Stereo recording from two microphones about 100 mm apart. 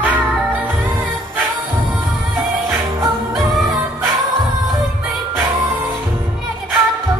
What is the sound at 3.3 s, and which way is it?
Music, centre (ahead or behind).